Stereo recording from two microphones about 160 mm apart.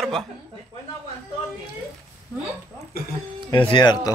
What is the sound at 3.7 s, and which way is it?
Speech, 25° left (ahead or behind).